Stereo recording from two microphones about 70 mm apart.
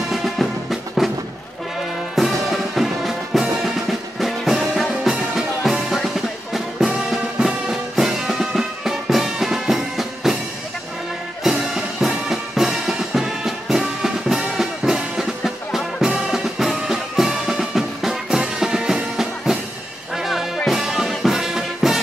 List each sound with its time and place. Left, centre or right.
0.1 s music: centre
2.1 s music: centre
11.4 s music: centre